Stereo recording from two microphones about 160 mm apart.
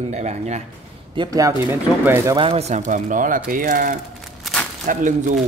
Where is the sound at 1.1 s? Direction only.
25° right (ahead or behind).